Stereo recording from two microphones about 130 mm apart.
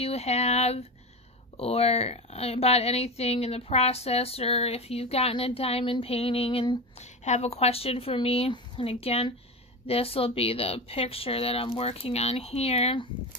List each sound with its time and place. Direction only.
0.0 s speech: 55° left (ahead or behind)
7.0 s speech: 60° left (ahead or behind)